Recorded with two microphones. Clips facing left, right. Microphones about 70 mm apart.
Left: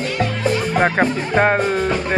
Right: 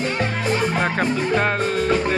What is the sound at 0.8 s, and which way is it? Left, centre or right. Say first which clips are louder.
Speech: left 4 dB; left.